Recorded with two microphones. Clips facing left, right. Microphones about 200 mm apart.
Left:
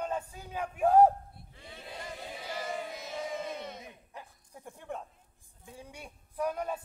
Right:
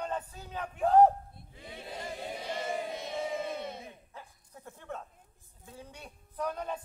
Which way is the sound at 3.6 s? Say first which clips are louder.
Right 2 dB; 30° right (ahead or behind).